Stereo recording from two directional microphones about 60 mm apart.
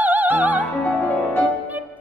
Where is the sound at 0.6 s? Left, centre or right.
Left.